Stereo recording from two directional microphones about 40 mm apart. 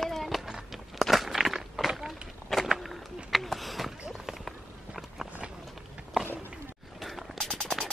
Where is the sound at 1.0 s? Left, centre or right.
Centre.